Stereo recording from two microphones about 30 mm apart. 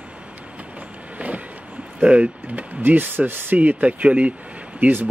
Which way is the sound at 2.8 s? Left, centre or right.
Right.